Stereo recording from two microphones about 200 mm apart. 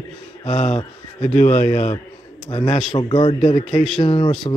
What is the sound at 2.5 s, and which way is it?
A man's voice, 25° left (ahead or behind).